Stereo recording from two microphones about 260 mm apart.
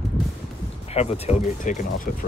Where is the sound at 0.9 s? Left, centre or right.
Left.